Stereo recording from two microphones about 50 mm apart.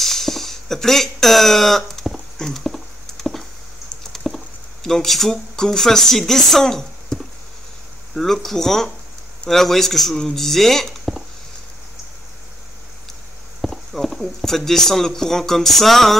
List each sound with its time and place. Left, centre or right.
0.0 s a sound: centre
2.3 s clip-clop: centre
3.3 s a sound: centre
4.1 s typing: centre
4.8 s speech: centre
13.6 s clip-clop: centre
14.2 s speech: centre